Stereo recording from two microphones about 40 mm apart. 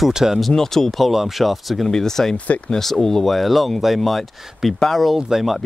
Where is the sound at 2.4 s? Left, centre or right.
Left.